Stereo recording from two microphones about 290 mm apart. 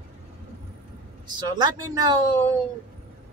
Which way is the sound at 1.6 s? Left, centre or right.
Centre.